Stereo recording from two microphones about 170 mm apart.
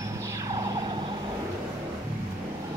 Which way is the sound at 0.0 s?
20° right (ahead or behind).